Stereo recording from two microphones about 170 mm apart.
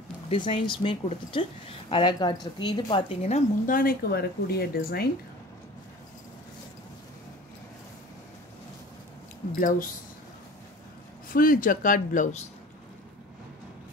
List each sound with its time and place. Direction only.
0.3 s speech: 30° left (ahead or behind)
3.2 s a woman's voice: 40° left (ahead or behind)
3.7 s speech: 60° left (ahead or behind)
9.6 s speech: 55° left (ahead or behind)
11.3 s speech: 55° left (ahead or behind)